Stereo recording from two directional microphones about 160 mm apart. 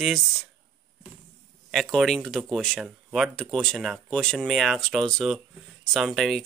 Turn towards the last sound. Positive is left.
turn(degrees=0)  # may be behind; listen again after turning